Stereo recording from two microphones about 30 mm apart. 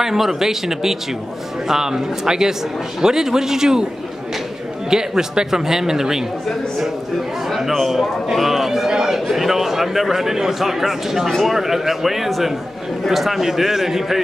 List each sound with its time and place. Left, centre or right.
0.0 s a man's voice: centre
4.8 s a man's voice: right
7.4 s a man's voice: centre